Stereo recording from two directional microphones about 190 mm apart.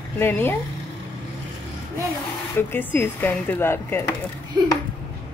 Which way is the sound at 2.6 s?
10° left (ahead or behind).